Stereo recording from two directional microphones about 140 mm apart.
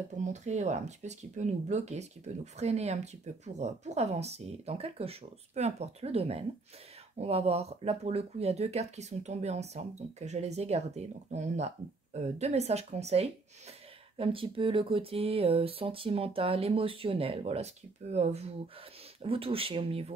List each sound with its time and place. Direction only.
0.2 s speech: 55° right (ahead or behind)